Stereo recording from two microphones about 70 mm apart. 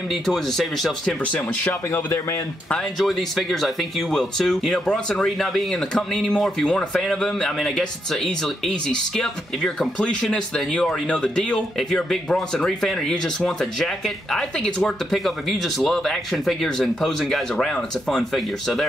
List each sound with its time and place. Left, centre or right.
0.1 s speech: centre
1.0 s speech: left
3.0 s speech: centre